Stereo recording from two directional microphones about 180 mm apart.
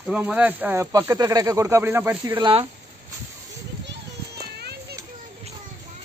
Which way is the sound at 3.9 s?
65° right (ahead or behind).